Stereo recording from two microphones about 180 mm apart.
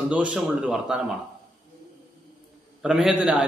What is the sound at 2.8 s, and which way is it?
Speech, 5° right (ahead or behind).